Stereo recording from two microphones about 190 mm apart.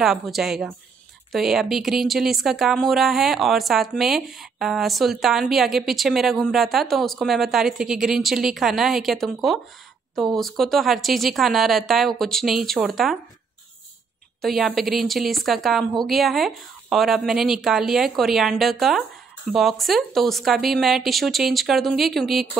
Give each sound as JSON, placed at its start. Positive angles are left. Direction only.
{"t": 0.0, "sound": "a woman's voice", "side_deg": 0}
{"t": 14.4, "sound": "a woman's voice", "side_deg": 0}